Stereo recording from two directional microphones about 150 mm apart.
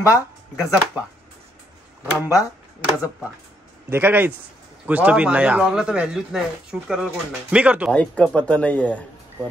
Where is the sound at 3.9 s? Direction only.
10° right (ahead or behind).